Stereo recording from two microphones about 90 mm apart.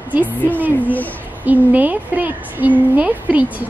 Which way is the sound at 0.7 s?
20° left (ahead or behind).